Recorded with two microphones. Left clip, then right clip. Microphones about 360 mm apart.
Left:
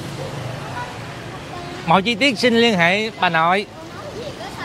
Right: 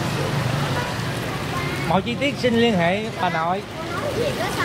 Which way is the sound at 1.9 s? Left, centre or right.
Left.